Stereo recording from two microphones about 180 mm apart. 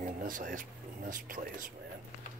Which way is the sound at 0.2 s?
45° right (ahead or behind).